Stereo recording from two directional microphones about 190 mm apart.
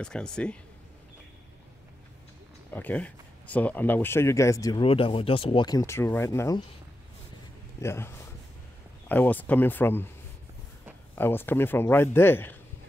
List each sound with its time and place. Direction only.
0.0 s speech: 5° left (ahead or behind)
2.7 s speech: 10° left (ahead or behind)
4.8 s speech: 30° left (ahead or behind)
7.8 s speech: 15° left (ahead or behind)
9.1 s speech: 10° left (ahead or behind)
11.1 s speech: 10° left (ahead or behind)